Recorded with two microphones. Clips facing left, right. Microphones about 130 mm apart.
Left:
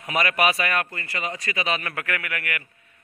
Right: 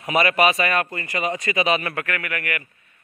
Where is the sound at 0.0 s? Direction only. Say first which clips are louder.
Right 4 dB; 5° right (ahead or behind).